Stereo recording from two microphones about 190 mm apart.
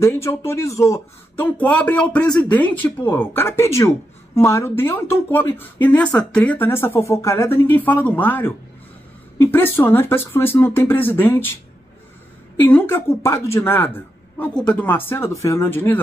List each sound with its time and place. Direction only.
0.0 s speech: 15° left (ahead or behind)
12.5 s speech: 10° left (ahead or behind)